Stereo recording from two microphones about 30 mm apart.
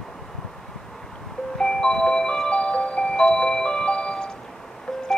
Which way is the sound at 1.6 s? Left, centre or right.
Left.